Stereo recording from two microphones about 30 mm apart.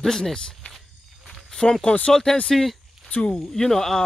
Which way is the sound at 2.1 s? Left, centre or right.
Centre.